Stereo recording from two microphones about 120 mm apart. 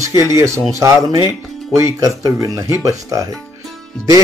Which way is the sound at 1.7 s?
25° right (ahead or behind).